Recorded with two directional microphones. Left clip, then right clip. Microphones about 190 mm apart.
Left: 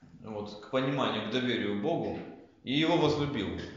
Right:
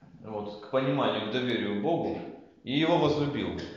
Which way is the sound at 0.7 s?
20° left (ahead or behind).